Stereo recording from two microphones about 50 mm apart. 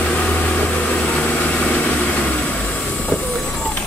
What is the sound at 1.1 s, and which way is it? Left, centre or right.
Vehicle, left.